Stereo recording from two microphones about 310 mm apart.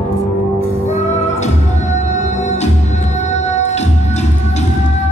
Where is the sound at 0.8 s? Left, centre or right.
Left.